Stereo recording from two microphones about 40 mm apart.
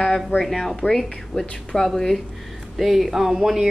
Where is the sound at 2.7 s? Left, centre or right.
Centre.